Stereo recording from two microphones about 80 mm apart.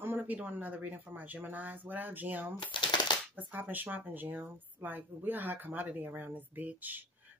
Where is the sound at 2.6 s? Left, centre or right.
Left.